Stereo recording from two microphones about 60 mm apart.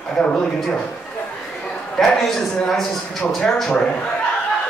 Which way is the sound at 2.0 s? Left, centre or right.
Centre.